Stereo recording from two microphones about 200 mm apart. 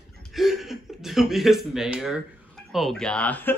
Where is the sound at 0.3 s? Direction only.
Centre (ahead or behind).